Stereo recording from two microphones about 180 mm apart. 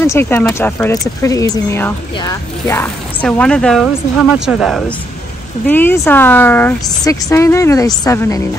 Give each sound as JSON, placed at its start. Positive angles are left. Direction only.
{"t": 0.0, "sound": "a woman's voice", "side_deg": 15}
{"t": 5.7, "sound": "a woman's voice", "side_deg": 10}